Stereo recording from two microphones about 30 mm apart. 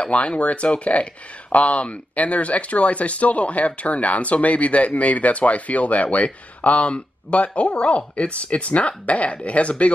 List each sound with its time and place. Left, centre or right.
0.0 s speech: left